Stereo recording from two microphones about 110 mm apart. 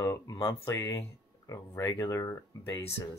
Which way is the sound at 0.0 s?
30° left (ahead or behind).